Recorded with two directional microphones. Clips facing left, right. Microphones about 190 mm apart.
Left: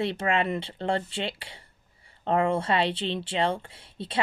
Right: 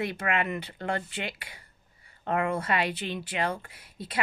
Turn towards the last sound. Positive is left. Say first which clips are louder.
# left 3 dB
turn(degrees=30)  # may be behind; listen again after turning